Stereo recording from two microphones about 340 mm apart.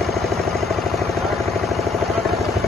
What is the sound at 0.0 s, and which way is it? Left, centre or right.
Vehicle, centre.